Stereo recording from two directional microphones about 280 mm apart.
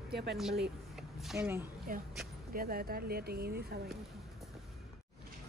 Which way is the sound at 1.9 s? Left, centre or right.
Right.